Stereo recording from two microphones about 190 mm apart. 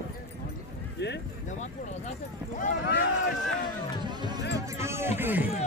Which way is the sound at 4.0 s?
20° right (ahead or behind).